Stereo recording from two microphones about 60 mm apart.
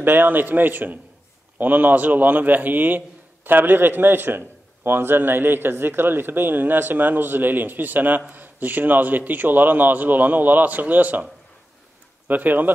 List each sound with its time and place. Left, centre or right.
0.0 s a man's voice: right
12.3 s a man's voice: right